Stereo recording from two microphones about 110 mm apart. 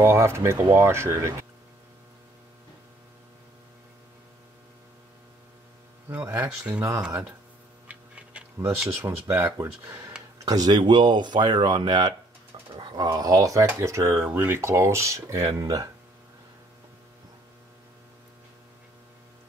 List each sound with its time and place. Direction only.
0.0 s speech: 25° right (ahead or behind)
6.0 s speech: 25° right (ahead or behind)
7.9 s a sound: 10° right (ahead or behind)
8.8 s speech: 25° right (ahead or behind)
10.4 s speech: 35° right (ahead or behind)
14.2 s speech: 15° right (ahead or behind)